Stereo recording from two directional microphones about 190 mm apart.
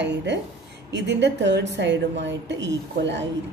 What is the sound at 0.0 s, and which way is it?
A woman's voice, 65° right (ahead or behind).